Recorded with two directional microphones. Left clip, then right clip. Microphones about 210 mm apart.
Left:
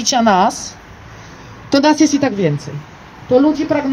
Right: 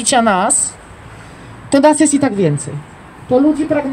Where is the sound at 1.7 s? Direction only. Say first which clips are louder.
Right 2 dB; 55° right (ahead or behind).